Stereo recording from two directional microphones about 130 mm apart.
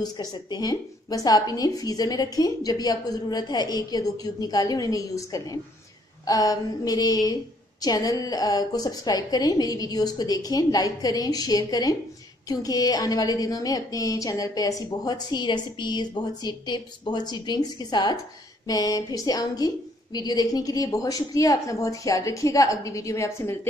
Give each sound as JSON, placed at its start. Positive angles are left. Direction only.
{"t": 0.0, "sound": "a woman's voice", "side_deg": 30}